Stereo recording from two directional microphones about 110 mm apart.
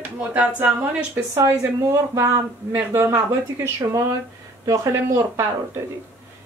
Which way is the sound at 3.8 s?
30° right (ahead or behind).